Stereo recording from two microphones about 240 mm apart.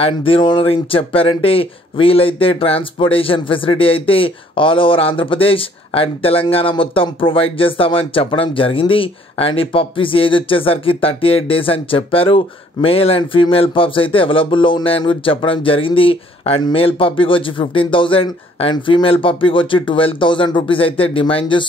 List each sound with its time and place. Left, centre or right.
0.0 s speech: left